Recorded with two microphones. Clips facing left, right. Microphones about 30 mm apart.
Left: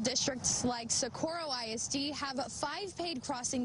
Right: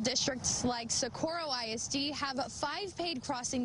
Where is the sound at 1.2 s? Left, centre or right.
Right.